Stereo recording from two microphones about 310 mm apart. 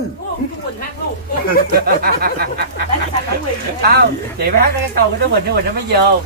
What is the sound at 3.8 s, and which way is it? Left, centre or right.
Speech, right.